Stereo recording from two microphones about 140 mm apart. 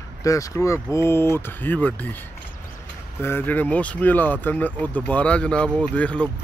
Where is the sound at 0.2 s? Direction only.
25° left (ahead or behind).